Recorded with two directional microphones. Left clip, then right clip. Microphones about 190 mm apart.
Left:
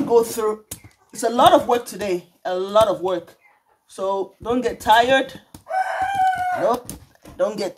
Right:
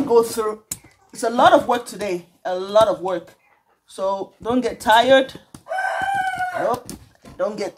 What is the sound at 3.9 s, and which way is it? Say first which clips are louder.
Speech: even; 25° right (ahead or behind).